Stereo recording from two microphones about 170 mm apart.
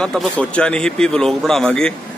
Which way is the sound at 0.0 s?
5° left (ahead or behind).